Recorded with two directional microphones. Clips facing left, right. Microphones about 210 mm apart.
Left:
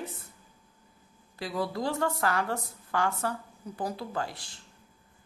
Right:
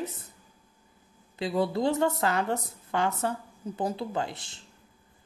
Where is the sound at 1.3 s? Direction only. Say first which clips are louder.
Right 5 dB; 25° right (ahead or behind).